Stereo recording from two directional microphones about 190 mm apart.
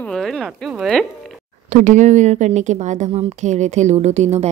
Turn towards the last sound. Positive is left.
turn(degrees=-35)  # may be behind; listen again after turning